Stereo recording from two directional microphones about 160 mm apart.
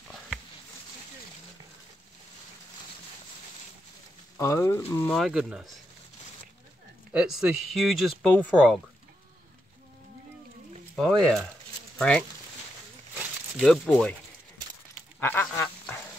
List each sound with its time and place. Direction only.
4.4 s speech: 15° left (ahead or behind)
5.2 s speech: 5° right (ahead or behind)
7.1 s speech: 5° right (ahead or behind)
11.0 s speech: centre (ahead or behind)
13.2 s a sound: 5° right (ahead or behind)
15.1 s duck: 15° left (ahead or behind)